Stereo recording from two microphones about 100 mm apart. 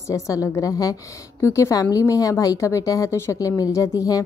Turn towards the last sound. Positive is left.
turn(degrees=35)  # may be behind; listen again after turning